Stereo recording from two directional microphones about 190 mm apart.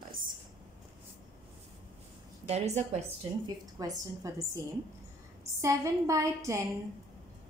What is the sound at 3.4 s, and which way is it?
Speech, 20° right (ahead or behind).